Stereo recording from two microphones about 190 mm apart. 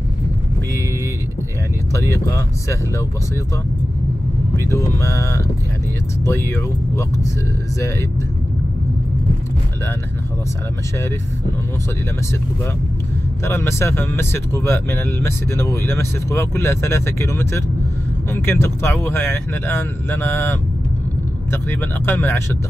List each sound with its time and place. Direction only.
1.9 s speech: 15° left (ahead or behind)
4.6 s speech: 15° left (ahead or behind)
13.4 s speech: 15° left (ahead or behind)